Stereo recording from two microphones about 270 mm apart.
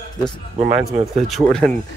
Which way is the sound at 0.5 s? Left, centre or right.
Right.